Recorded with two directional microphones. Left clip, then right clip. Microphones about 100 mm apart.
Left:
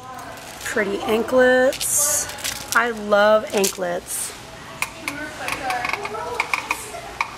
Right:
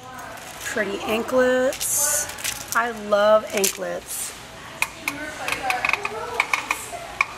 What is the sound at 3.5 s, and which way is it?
Speech, centre (ahead or behind).